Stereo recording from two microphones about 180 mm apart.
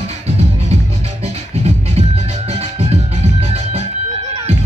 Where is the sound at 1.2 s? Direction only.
35° right (ahead or behind).